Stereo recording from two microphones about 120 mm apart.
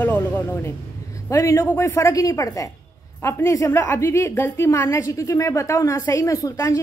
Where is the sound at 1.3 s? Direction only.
25° left (ahead or behind).